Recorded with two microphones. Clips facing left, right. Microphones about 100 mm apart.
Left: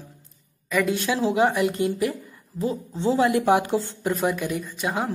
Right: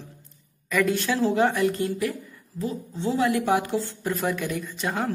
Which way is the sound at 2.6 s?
25° left (ahead or behind).